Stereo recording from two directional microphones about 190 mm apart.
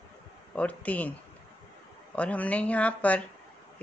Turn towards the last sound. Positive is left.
turn(degrees=5)  # may be behind; listen again after turning